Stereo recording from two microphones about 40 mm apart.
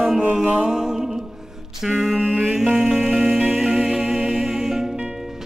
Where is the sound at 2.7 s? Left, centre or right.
Centre.